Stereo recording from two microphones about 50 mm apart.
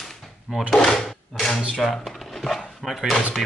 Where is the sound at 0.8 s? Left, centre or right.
Centre.